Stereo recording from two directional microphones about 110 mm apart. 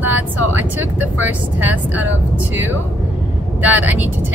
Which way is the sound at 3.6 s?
15° right (ahead or behind).